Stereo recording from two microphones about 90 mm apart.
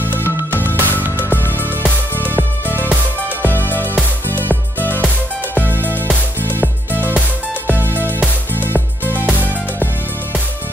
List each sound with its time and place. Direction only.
0.5 s music: 20° left (ahead or behind)
1.0 s music: 20° right (ahead or behind)
3.4 s music: 20° left (ahead or behind)
6.4 s music: 20° right (ahead or behind)